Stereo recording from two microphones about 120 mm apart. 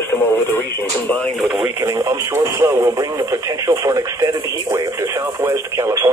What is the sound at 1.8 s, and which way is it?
Speech, 30° right (ahead or behind).